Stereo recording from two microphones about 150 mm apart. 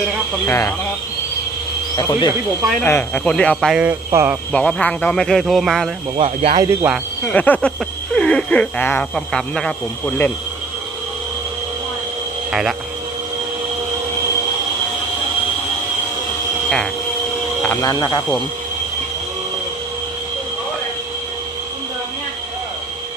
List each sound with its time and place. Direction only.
0.5 s speech: 20° left (ahead or behind)
2.0 s speech: 30° left (ahead or behind)
2.8 s speech: 15° left (ahead or behind)
4.1 s speech: 15° right (ahead or behind)
4.5 s speech: 5° left (ahead or behind)
6.1 s speech: 40° right (ahead or behind)
6.6 s speech: 15° right (ahead or behind)
7.3 s speech: 10° left (ahead or behind)
12.4 s speech: 5° right (ahead or behind)
17.6 s a sound: 10° left (ahead or behind)
17.8 s speech: 25° left (ahead or behind)